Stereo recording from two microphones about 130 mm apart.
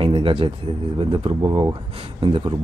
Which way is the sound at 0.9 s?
40° right (ahead or behind).